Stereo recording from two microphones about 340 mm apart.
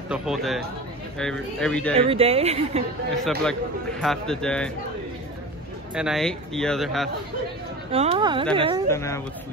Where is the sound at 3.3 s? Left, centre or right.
Centre.